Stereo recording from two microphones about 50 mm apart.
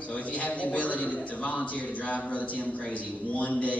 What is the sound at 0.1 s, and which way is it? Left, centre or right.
A man's voice, left.